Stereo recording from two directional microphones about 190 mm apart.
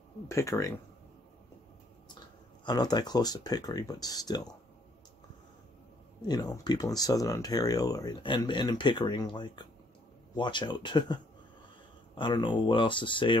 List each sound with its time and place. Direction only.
0.3 s speech: 15° left (ahead or behind)
2.6 s speech: 20° left (ahead or behind)
6.2 s speech: 20° left (ahead or behind)
12.2 s speech: 25° left (ahead or behind)